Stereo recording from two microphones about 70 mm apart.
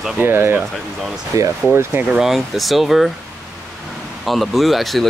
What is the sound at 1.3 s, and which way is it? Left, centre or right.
Speech, right.